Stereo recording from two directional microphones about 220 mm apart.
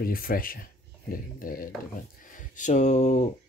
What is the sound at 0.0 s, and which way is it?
Speech, 40° left (ahead or behind).